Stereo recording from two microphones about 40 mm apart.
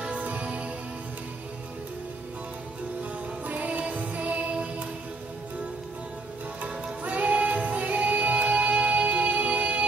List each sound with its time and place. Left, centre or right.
0.2 s music: right
3.4 s music: right
6.6 s music: right